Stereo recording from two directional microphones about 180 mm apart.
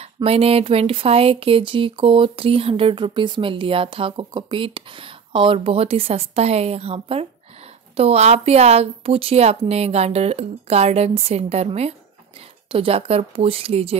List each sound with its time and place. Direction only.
0.0 s speech: 35° right (ahead or behind)